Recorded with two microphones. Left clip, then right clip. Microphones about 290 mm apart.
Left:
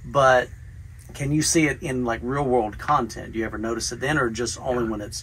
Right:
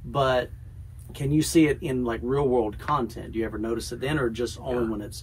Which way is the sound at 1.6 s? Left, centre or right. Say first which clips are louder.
Even; centre.